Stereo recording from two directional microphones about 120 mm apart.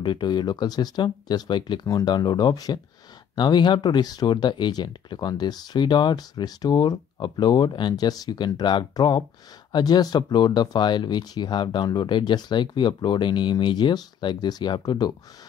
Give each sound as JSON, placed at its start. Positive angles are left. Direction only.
{"t": 0.0, "sound": "speech", "side_deg": 40}